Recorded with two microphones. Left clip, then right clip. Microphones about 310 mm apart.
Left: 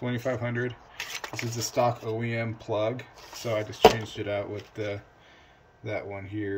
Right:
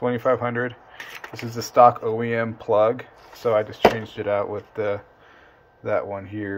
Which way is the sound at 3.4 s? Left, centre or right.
Centre.